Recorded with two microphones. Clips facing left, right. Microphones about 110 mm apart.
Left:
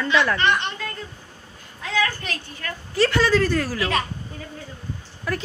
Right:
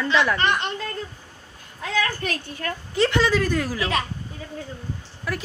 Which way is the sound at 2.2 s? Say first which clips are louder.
Right 4 dB; 50° right (ahead or behind).